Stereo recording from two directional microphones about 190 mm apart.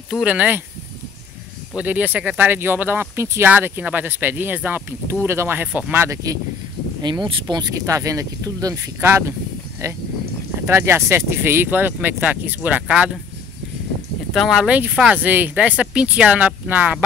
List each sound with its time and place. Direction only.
0.1 s speech: 5° right (ahead or behind)
1.8 s speech: 10° right (ahead or behind)
10.7 s speech: 15° right (ahead or behind)
14.3 s speech: centre (ahead or behind)